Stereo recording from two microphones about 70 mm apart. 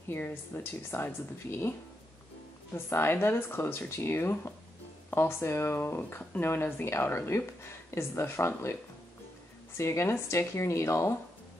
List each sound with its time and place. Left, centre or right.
0.1 s speech: left
2.7 s speech: left
9.8 s speech: left